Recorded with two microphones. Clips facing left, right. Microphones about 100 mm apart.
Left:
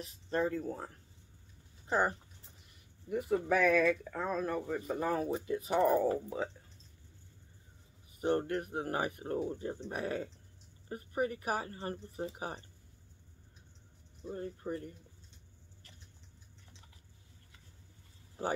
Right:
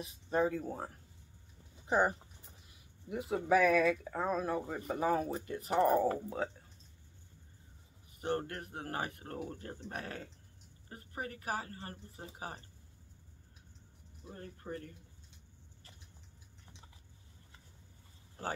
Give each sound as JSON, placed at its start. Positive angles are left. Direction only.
{"t": 0.0, "sound": "speech", "side_deg": -10}
{"t": 8.2, "sound": "speech", "side_deg": 20}
{"t": 14.3, "sound": "speech", "side_deg": 20}